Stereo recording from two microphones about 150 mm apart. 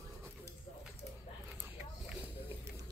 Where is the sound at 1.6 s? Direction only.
10° right (ahead or behind).